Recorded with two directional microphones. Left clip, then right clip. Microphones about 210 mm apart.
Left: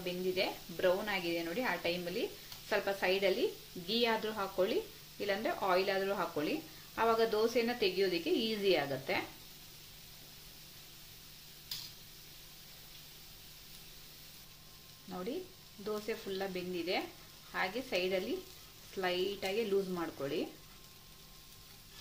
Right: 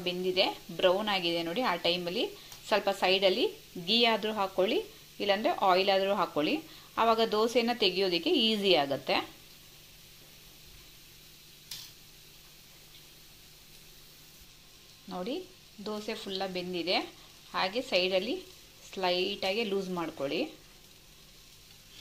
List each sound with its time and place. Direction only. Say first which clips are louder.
0.0 s speech: right 6 dB; 15° right (ahead or behind)
15.8 s speech: right 2 dB; 10° right (ahead or behind)